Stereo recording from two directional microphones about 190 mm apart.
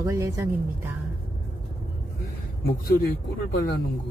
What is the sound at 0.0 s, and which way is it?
Speech, 15° right (ahead or behind).